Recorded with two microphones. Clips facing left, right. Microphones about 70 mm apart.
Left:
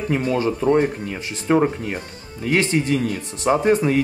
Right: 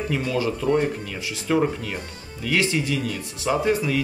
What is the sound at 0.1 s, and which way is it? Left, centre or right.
Speech, left.